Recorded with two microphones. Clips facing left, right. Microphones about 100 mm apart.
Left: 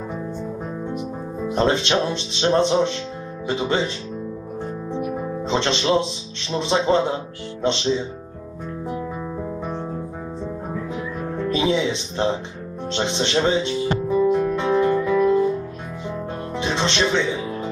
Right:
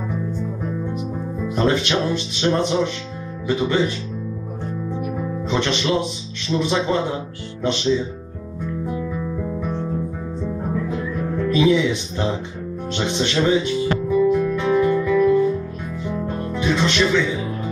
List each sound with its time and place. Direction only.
1.4 s speech: 25° left (ahead or behind)
5.5 s speech: 25° left (ahead or behind)
9.1 s music: 25° left (ahead or behind)
11.3 s speech: 30° left (ahead or behind)
12.9 s music: 25° left (ahead or behind)
16.5 s music: 25° left (ahead or behind)